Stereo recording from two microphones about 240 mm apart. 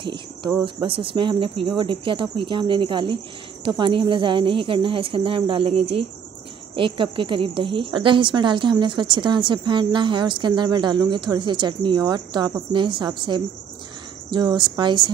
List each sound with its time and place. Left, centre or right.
0.0 s cricket: centre
0.7 s a woman's voice: right